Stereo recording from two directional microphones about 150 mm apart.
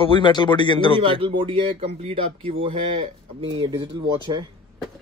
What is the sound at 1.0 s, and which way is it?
Speech, 35° right (ahead or behind).